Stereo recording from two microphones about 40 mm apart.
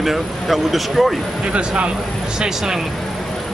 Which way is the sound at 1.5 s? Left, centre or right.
Right.